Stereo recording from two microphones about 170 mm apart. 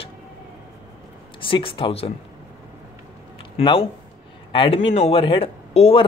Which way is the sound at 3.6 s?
30° left (ahead or behind).